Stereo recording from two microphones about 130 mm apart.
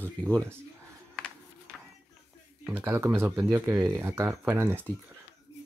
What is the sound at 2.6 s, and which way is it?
Speech, 15° right (ahead or behind).